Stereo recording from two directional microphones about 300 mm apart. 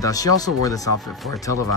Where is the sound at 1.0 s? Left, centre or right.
Centre.